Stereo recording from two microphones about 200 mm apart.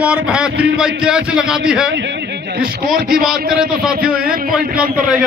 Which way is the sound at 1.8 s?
65° right (ahead or behind).